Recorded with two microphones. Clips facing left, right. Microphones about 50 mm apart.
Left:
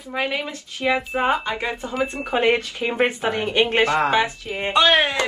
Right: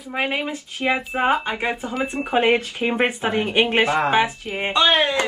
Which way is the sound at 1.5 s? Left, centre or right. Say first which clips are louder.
Right 1 dB; right.